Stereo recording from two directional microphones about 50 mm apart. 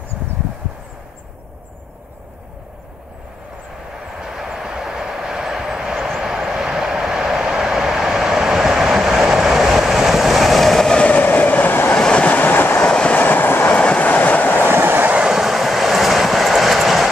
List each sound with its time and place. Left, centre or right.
4.2 s vehicle: centre
11.0 s train: left
12.0 s train: left
12.4 s train: left
12.8 s train: left
13.2 s train: left
13.7 s train: left
14.7 s train: right
15.1 s train: centre